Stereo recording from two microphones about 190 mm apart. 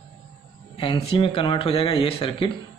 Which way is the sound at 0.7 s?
30° left (ahead or behind).